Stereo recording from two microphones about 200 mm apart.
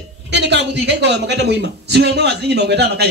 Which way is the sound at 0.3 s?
60° right (ahead or behind).